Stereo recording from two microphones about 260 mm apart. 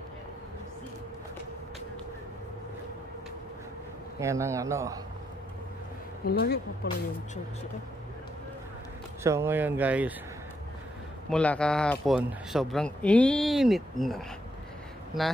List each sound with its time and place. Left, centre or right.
4.2 s speech: centre
6.2 s speech: left
9.2 s speech: centre
11.2 s speech: centre